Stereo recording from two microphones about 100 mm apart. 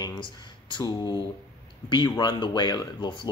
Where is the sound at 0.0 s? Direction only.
50° left (ahead or behind).